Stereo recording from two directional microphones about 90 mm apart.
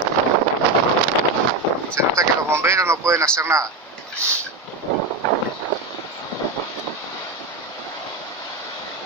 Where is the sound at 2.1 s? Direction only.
35° right (ahead or behind).